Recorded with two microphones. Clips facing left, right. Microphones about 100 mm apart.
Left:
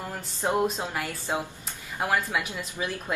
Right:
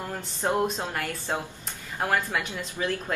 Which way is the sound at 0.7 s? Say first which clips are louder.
Even; 10° left (ahead or behind).